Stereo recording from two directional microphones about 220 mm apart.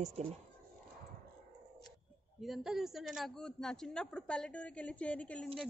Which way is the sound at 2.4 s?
Centre (ahead or behind).